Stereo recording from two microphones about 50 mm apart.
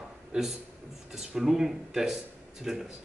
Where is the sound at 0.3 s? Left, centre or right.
Centre.